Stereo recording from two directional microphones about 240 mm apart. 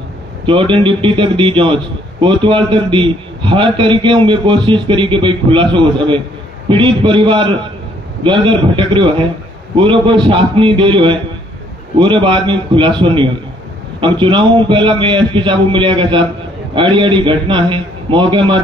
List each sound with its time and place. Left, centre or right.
0.5 s a man's voice: right